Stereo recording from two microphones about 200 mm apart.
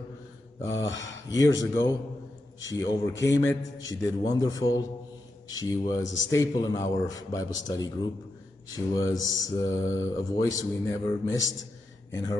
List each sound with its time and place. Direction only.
0.9 s speech: 70° left (ahead or behind)
1.3 s speech: 20° left (ahead or behind)